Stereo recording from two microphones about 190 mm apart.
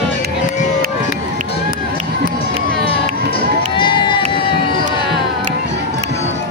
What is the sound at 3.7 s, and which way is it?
Run, 25° left (ahead or behind).